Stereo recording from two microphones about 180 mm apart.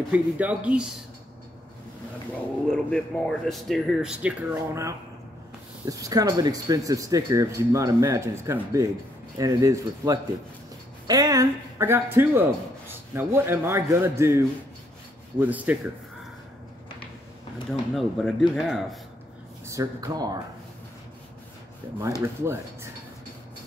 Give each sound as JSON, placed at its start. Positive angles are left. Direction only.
{"t": 0.1, "sound": "speech", "side_deg": -5}
{"t": 2.7, "sound": "speech", "side_deg": 5}
{"t": 17.6, "sound": "speech", "side_deg": 0}
{"t": 19.6, "sound": "speech", "side_deg": -15}
{"t": 21.8, "sound": "speech", "side_deg": -15}